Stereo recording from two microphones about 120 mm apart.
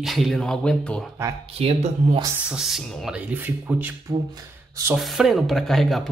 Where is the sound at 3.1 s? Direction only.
15° right (ahead or behind).